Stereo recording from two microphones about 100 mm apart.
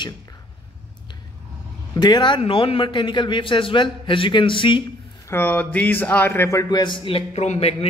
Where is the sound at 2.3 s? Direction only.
65° left (ahead or behind).